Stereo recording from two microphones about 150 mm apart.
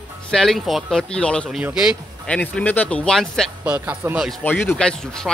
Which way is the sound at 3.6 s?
10° right (ahead or behind).